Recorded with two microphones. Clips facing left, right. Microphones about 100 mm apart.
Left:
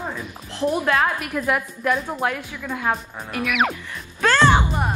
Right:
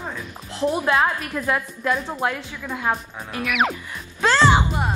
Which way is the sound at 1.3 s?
10° left (ahead or behind).